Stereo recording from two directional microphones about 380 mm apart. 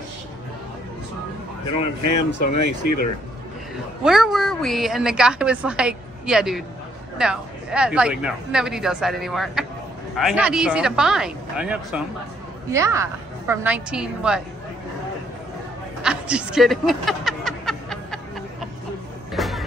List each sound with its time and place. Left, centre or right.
2.5 s speech: left
4.0 s a woman's voice: centre
16.0 s a sound: centre
19.3 s vehicle: centre